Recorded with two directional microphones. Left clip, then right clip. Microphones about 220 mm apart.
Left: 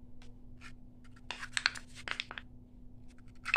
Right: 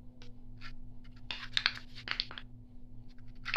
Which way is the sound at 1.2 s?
15° left (ahead or behind).